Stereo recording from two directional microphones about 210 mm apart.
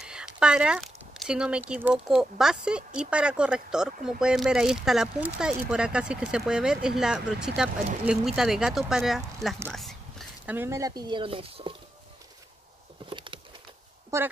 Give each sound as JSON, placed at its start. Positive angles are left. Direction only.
{"t": 0.0, "sound": "a sound", "side_deg": -5}
{"t": 1.7, "sound": "speech", "side_deg": -5}
{"t": 9.7, "sound": "whispering", "side_deg": 0}
{"t": 10.5, "sound": "speech", "side_deg": -10}
{"t": 13.1, "sound": "patter", "side_deg": -25}